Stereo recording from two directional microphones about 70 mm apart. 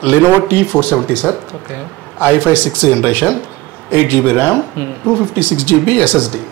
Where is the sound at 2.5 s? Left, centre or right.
Left.